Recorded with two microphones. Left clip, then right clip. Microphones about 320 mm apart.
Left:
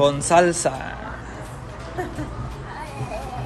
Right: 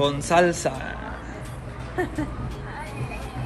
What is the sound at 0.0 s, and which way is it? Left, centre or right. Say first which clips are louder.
Speech: left 3 dB; centre.